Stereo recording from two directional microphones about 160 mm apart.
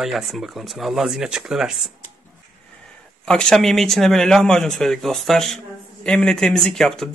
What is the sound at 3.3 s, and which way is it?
Speech, 5° left (ahead or behind).